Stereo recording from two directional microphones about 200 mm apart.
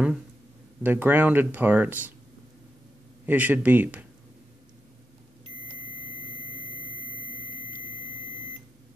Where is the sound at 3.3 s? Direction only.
10° right (ahead or behind).